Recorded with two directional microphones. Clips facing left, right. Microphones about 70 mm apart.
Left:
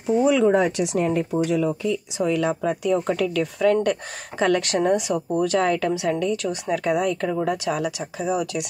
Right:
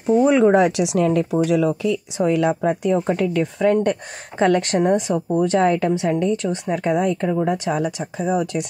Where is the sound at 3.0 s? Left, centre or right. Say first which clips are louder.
Right 3 dB; right.